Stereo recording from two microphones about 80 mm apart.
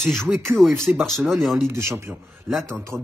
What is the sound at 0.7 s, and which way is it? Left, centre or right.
Speech, right.